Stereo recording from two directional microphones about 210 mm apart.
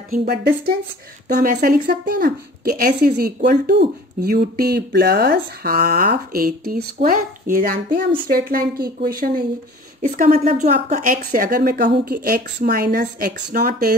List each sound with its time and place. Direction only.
0.1 s speech: 45° right (ahead or behind)
10.0 s speech: 35° right (ahead or behind)